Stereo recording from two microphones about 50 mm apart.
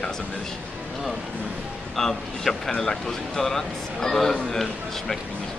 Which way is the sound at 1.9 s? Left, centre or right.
Centre.